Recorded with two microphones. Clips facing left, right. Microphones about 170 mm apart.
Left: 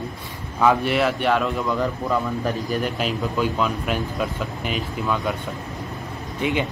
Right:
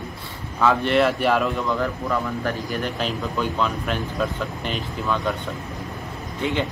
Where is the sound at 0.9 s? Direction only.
Centre (ahead or behind).